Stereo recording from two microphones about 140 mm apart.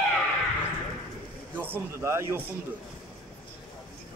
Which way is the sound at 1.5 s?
15° right (ahead or behind).